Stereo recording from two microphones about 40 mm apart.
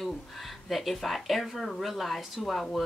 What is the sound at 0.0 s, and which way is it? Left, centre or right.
Speech, centre.